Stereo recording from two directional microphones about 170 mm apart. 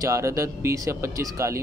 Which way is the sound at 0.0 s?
20° right (ahead or behind).